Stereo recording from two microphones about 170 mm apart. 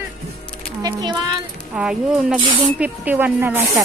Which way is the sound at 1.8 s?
5° right (ahead or behind).